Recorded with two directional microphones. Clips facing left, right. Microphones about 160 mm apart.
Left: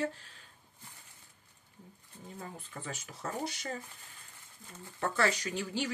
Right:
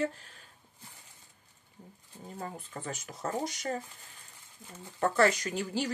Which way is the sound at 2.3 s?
45° right (ahead or behind).